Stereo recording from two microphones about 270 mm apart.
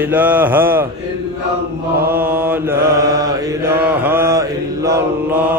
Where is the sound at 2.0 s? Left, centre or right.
Centre.